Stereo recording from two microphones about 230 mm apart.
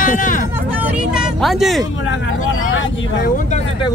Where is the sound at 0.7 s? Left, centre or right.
Centre.